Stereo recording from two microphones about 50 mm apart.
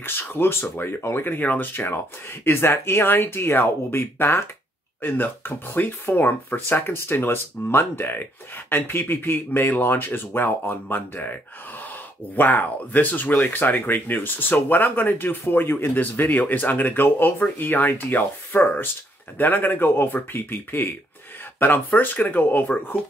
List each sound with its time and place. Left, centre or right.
0.0 s speech: left
12.4 s speech: left